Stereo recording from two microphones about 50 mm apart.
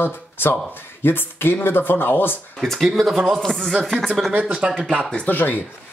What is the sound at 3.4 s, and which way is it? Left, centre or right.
Speech, centre.